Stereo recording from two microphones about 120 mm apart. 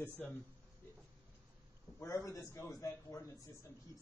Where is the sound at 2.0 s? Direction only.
25° left (ahead or behind).